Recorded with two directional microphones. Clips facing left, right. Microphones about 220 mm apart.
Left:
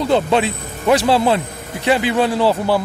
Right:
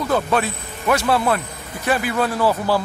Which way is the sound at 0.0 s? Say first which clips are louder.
Left 4 dB; 25° left (ahead or behind).